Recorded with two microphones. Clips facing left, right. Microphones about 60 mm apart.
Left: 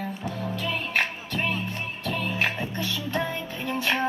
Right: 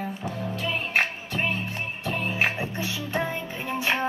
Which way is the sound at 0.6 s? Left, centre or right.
Centre.